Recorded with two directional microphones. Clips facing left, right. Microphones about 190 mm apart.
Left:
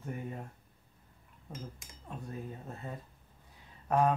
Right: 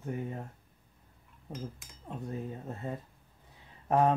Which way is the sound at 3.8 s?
25° right (ahead or behind).